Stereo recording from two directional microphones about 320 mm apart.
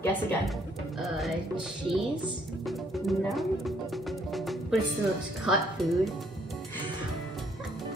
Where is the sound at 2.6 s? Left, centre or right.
Centre.